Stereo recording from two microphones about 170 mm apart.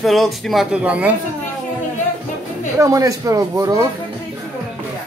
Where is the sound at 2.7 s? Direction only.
20° right (ahead or behind).